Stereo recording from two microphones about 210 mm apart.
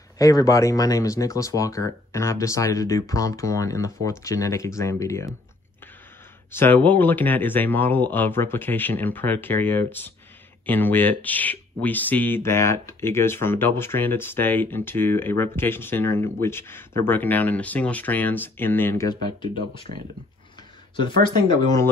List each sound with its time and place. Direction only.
0.2 s speech: 15° left (ahead or behind)
6.5 s speech: 10° left (ahead or behind)
21.0 s speech: 20° left (ahead or behind)